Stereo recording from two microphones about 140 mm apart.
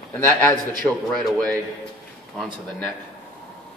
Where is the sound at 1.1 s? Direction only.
5° left (ahead or behind).